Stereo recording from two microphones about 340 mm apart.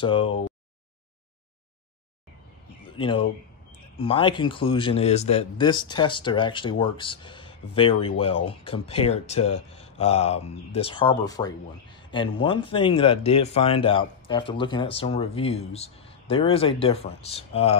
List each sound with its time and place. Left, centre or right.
0.0 s speech: centre
2.9 s speech: centre